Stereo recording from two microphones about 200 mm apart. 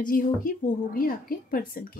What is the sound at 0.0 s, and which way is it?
Speech, 45° left (ahead or behind).